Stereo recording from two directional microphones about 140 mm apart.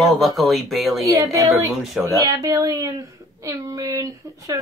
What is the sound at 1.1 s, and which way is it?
A child's voice, 25° right (ahead or behind).